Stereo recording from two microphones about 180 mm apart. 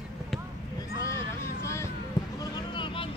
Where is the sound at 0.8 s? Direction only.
15° left (ahead or behind).